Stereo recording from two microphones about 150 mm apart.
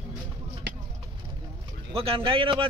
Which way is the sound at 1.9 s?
40° right (ahead or behind).